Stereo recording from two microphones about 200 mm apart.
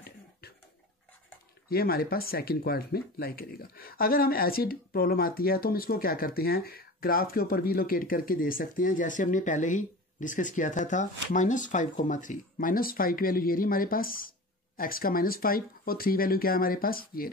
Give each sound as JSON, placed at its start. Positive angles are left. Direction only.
{"t": 1.7, "sound": "speech", "side_deg": 50}